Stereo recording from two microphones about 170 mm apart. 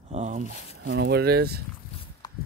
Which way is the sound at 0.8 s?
90° right.